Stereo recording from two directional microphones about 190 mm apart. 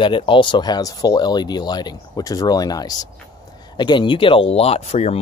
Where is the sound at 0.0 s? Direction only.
25° left (ahead or behind).